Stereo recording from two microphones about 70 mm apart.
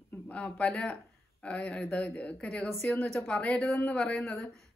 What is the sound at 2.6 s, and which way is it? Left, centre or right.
Speech, centre.